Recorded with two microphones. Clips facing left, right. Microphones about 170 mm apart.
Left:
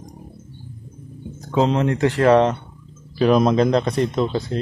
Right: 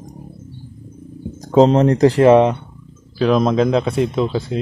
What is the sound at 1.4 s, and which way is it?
Speech, 40° right (ahead or behind).